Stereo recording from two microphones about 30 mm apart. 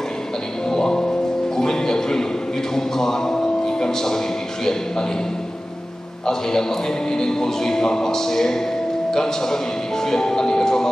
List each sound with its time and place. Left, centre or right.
0.7 s music: centre
1.6 s a man's voice: centre
7.1 s speech: centre